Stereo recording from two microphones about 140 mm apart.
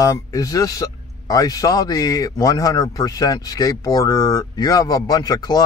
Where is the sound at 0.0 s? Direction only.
25° left (ahead or behind).